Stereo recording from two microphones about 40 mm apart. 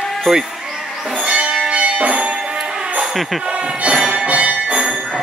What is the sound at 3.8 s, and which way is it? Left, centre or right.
Music, right.